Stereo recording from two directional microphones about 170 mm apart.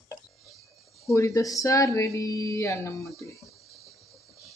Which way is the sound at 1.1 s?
20° left (ahead or behind).